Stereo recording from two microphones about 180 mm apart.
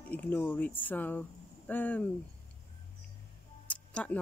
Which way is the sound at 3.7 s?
5° left (ahead or behind).